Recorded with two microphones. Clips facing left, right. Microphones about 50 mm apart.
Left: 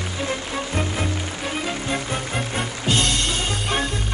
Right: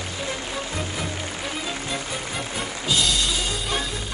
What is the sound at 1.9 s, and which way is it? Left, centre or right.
Music, left.